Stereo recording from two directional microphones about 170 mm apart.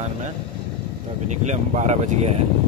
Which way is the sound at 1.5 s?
45° right (ahead or behind).